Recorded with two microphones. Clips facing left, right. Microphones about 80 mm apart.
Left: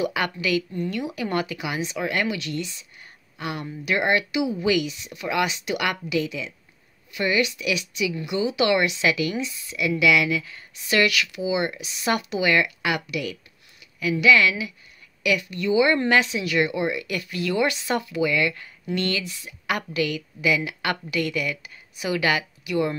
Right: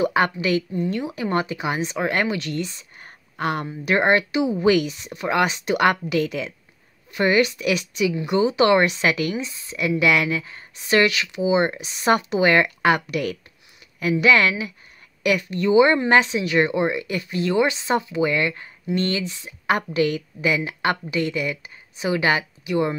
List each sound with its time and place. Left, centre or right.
0.0 s a woman's voice: right